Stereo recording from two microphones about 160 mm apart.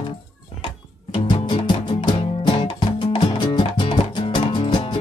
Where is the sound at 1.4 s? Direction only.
30° left (ahead or behind).